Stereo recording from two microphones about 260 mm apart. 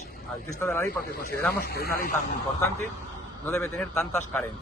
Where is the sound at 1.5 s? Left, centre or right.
Left.